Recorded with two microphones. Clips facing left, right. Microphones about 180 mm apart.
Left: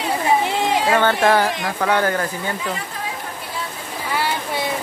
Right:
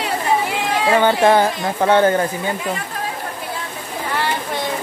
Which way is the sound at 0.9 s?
15° right (ahead or behind).